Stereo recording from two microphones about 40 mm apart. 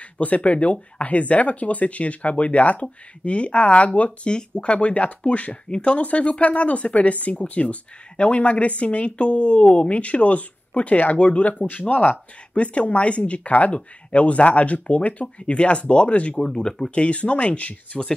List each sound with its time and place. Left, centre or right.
0.2 s speech: left
4.3 s speech: left
16.4 s speech: centre
16.9 s speech: left
17.9 s speech: centre